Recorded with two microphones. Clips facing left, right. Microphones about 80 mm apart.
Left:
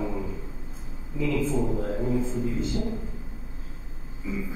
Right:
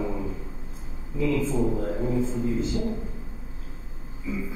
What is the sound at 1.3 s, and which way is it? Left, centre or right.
A man's voice, centre.